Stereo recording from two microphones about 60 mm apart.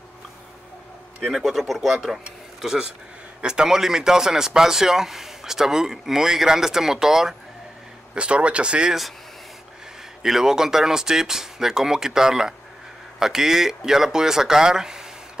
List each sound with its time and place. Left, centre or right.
1.3 s speech: centre
8.1 s speech: centre
10.2 s speech: centre